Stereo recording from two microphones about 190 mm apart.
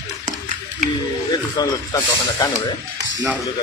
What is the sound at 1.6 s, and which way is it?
Speech, 25° left (ahead or behind).